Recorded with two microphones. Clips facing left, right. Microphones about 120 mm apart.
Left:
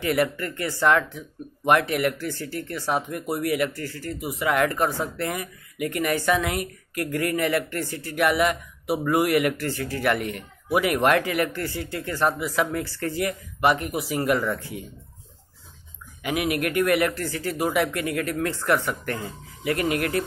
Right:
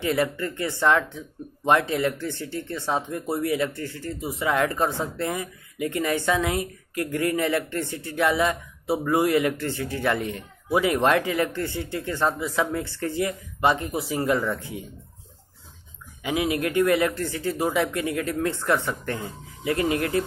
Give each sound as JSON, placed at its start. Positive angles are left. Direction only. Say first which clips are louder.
{"t": 0.0, "sound": "speech", "louder": "left 1 dB", "side_deg": -20}
{"t": 16.2, "sound": "speech", "louder": "even", "side_deg": -25}